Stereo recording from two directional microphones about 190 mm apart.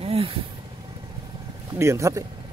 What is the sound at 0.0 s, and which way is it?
Vehicle, 30° right (ahead or behind).